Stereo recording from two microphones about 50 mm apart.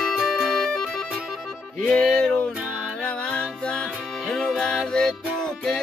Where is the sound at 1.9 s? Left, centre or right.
Centre.